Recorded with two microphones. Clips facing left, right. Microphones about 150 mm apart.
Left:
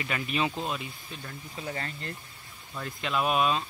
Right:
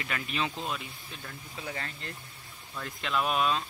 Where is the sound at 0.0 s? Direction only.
10° left (ahead or behind).